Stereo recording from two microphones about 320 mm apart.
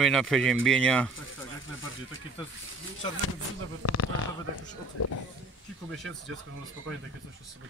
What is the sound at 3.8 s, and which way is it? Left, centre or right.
Speech, left.